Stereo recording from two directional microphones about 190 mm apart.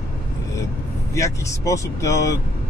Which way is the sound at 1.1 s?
15° left (ahead or behind).